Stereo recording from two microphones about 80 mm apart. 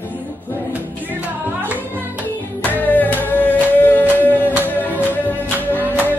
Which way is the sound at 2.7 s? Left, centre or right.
Left.